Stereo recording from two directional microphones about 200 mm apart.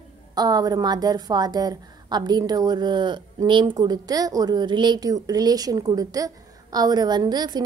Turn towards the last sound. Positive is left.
turn(degrees=-20)  # may be behind; listen again after turning